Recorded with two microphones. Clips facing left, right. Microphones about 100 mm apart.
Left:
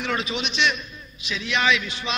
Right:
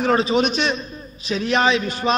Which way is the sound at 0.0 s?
35° right (ahead or behind).